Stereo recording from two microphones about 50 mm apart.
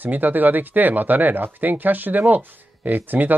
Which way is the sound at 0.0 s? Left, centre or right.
Right.